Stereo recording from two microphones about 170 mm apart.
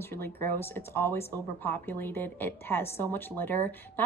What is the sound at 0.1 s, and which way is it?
Speech, 15° left (ahead or behind).